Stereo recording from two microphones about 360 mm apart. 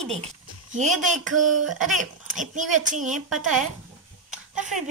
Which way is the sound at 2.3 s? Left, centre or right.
Right.